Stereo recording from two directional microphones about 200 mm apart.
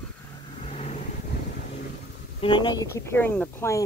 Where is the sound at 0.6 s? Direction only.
35° left (ahead or behind).